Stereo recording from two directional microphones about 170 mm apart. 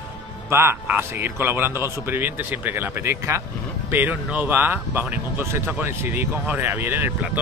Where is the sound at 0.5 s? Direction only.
15° right (ahead or behind).